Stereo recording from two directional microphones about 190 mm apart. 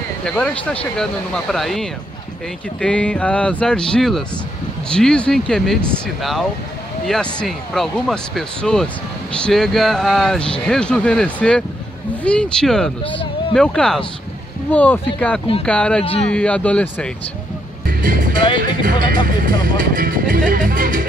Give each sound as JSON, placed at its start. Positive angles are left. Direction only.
{"t": 0.2, "sound": "speech", "side_deg": 5}
{"t": 16.0, "sound": "speech", "side_deg": 30}
{"t": 16.3, "sound": "speech", "side_deg": 5}
{"t": 17.8, "sound": "music", "side_deg": -45}
{"t": 18.8, "sound": "speech", "side_deg": -45}